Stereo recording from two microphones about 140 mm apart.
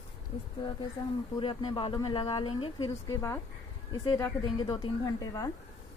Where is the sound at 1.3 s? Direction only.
40° left (ahead or behind).